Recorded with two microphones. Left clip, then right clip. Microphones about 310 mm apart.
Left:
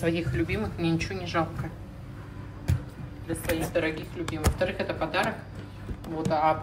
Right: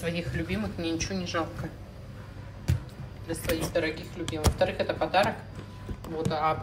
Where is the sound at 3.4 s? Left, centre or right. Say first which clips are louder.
Left 1 dB; centre.